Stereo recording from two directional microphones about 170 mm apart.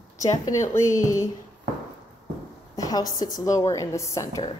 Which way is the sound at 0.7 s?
15° left (ahead or behind).